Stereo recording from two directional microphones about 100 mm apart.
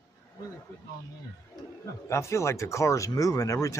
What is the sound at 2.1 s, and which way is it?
Speech, 30° left (ahead or behind).